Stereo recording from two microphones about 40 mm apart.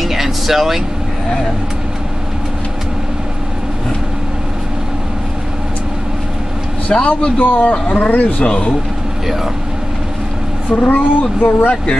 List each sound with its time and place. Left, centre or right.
0.0 s vehicle: centre
6.9 s speech: left
8.5 s speech: left
10.8 s speech: left
11.7 s speech: left